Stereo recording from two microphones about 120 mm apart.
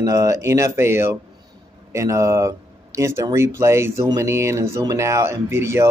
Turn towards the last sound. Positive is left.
turn(degrees=-25)  # may be behind; listen again after turning